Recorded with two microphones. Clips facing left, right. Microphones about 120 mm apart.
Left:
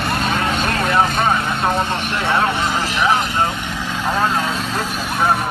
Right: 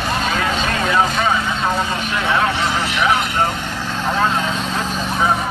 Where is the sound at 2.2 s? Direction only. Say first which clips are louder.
Even; 30° left (ahead or behind).